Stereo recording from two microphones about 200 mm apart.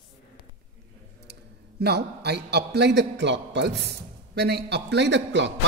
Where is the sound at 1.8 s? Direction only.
55° right (ahead or behind).